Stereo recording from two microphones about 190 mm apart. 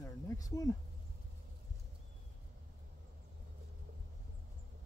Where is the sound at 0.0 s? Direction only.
20° left (ahead or behind).